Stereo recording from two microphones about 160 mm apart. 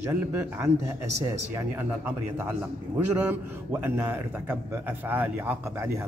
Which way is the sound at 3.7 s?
15° right (ahead or behind).